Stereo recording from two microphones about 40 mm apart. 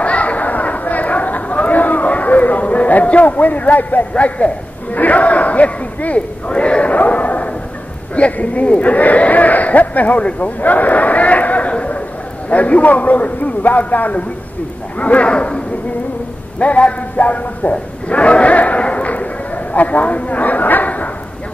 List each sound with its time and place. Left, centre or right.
0.0 s chatter: left
4.1 s a man's voice: left
4.9 s a sound: left
8.2 s a man's voice: left
11.7 s a sound: left
12.4 s a man's voice: left